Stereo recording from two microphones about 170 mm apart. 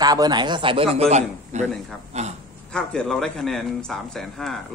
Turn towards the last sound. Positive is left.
turn(degrees=0)  # may be behind; listen again after turning